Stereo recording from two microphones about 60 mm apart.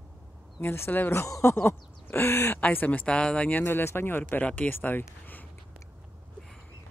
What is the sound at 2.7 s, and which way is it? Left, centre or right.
Speech, left.